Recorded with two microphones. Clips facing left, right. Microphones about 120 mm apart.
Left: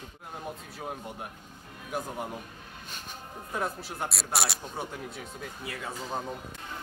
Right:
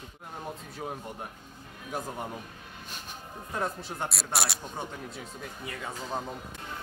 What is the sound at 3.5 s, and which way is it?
Speech, 5° left (ahead or behind).